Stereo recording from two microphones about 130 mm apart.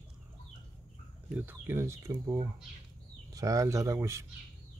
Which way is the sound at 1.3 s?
15° right (ahead or behind).